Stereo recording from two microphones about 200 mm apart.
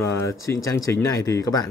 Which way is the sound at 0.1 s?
15° left (ahead or behind).